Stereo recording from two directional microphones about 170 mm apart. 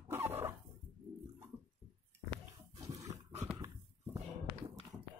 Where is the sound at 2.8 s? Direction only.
20° right (ahead or behind).